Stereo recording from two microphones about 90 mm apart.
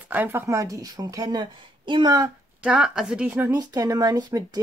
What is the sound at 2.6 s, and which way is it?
Speech, 10° right (ahead or behind).